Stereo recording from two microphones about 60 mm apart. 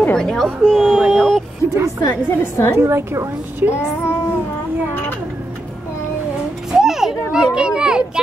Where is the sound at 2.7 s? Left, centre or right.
Right.